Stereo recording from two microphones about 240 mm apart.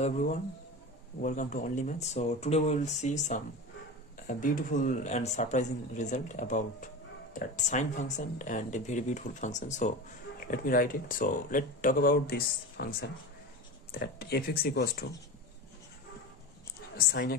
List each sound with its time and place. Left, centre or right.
0.0 s speech: left
16.9 s speech: left